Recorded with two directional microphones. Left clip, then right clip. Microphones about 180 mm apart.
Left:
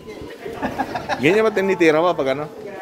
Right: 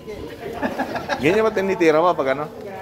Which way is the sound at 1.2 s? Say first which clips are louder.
Left 2 dB; 40° left (ahead or behind).